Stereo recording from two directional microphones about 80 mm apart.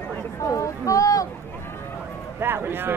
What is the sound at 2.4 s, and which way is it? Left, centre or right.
Speech, right.